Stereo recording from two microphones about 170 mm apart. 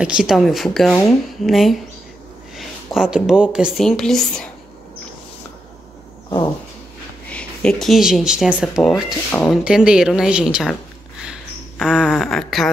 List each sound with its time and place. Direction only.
0.0 s speech: 5° right (ahead or behind)
7.2 s speech: 5° left (ahead or behind)
11.8 s speech: 5° right (ahead or behind)